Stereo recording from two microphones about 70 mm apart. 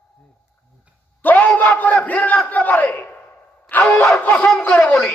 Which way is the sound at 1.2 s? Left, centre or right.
Left.